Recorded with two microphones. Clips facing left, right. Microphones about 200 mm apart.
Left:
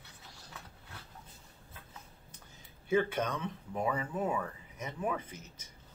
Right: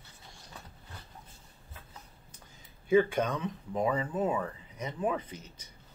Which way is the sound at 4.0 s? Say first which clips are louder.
Right 3 dB; 25° right (ahead or behind).